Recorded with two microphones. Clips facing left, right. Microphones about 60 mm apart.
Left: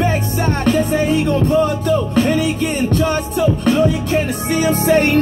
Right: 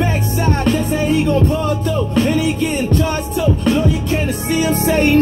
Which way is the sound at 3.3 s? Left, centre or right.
Left.